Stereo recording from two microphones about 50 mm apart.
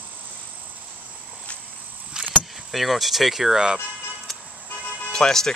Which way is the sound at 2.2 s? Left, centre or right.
Centre.